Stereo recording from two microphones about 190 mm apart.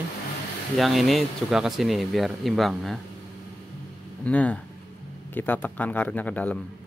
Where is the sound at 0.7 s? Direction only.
Centre (ahead or behind).